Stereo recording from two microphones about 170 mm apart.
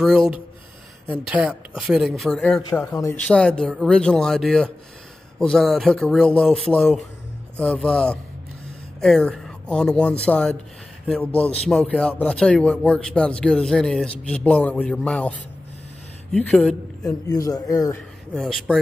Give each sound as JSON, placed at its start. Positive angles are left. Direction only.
{"t": 0.0, "sound": "a man's voice", "side_deg": 0}
{"t": 17.3, "sound": "speech", "side_deg": 20}
{"t": 18.3, "sound": "speech", "side_deg": 0}